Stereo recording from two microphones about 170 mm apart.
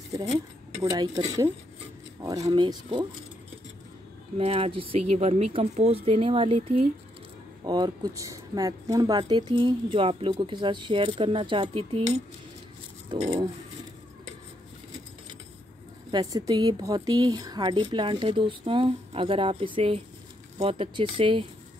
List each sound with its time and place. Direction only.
0.8 s speech: 20° right (ahead or behind)
4.4 s speech: 35° right (ahead or behind)
7.6 s speech: 25° right (ahead or behind)
16.1 s speech: 25° right (ahead or behind)